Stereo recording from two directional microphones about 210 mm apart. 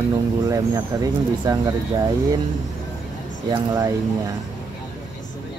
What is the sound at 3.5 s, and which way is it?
Speech, 15° right (ahead or behind).